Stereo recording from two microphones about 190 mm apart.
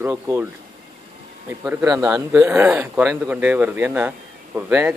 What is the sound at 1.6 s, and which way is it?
Speech, 10° right (ahead or behind).